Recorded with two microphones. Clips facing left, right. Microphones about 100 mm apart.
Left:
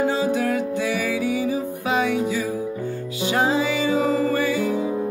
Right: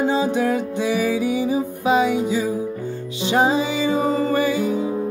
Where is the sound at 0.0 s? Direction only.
20° right (ahead or behind).